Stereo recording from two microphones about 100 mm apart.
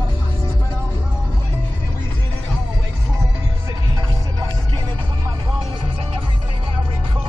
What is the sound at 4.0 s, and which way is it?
Music, 45° right (ahead or behind).